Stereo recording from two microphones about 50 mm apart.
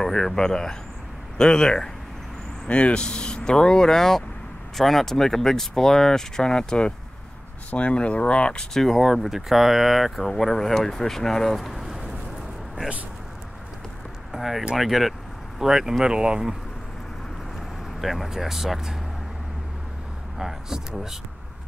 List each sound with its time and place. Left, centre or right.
0.0 s speech: centre
7.7 s speech: left
8.9 s speech: centre
14.3 s speech: centre
18.0 s speech: centre
20.3 s speech: centre